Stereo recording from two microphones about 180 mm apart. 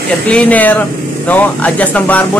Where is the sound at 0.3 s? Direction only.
5° left (ahead or behind).